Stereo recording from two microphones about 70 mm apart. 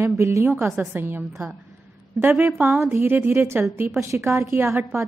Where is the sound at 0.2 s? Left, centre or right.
Right.